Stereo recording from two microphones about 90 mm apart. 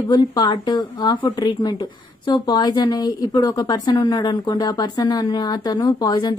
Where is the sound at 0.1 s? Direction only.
55° left (ahead or behind).